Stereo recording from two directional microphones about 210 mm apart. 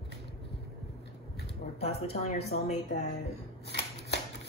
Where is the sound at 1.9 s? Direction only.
30° left (ahead or behind).